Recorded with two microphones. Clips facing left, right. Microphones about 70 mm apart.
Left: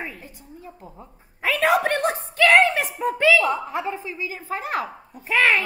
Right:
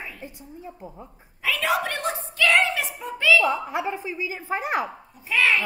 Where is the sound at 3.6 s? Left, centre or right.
Centre.